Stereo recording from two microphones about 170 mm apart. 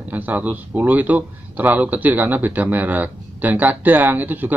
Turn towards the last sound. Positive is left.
turn(degrees=-10)  # may be behind; listen again after turning